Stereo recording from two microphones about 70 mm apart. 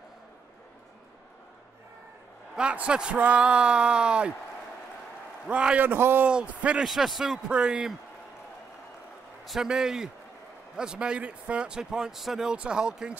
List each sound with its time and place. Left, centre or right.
2.5 s speech: centre
5.5 s speech: centre
5.9 s a man's voice: right
6.2 s speech: centre
6.8 s speech: centre
9.4 s speech: centre